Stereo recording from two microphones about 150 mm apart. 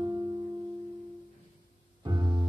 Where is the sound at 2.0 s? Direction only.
25° right (ahead or behind).